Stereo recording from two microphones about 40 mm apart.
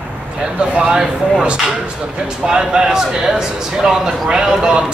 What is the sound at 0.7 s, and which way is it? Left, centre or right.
Speech, right.